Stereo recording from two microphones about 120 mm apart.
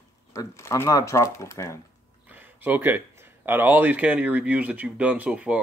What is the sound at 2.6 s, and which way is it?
Speech, 15° right (ahead or behind).